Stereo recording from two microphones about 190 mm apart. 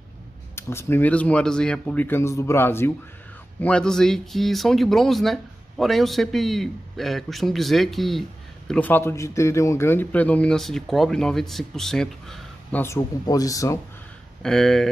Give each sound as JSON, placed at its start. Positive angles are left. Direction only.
{"t": 0.6, "sound": "speech", "side_deg": 15}
{"t": 12.8, "sound": "speech", "side_deg": 15}
{"t": 14.4, "sound": "speech", "side_deg": 0}